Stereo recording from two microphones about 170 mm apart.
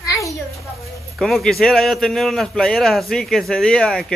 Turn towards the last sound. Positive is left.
turn(degrees=5)  # may be behind; listen again after turning